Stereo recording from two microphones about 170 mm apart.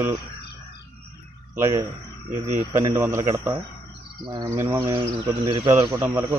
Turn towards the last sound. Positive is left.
turn(degrees=-15)  # may be behind; listen again after turning